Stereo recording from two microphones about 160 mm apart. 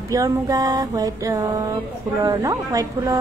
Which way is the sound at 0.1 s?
20° right (ahead or behind).